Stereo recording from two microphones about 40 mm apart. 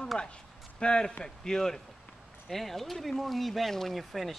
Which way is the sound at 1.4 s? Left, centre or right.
Centre.